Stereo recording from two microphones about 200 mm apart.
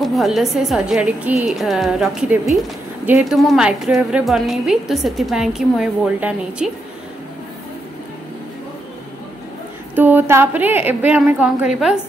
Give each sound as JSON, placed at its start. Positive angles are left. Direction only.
{"t": 0.0, "sound": "a woman's voice", "side_deg": 0}
{"t": 9.9, "sound": "a woman's voice", "side_deg": -10}